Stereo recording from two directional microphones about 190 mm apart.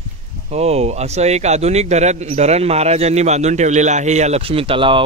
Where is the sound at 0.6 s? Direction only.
35° right (ahead or behind).